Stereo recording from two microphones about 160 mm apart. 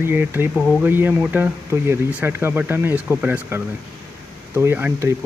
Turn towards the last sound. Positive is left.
turn(degrees=-10)  # may be behind; listen again after turning